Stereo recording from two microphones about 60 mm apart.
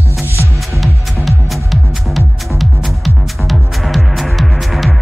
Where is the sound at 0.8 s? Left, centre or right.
Centre.